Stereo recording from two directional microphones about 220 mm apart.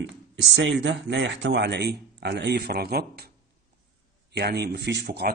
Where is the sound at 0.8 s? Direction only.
55° right (ahead or behind).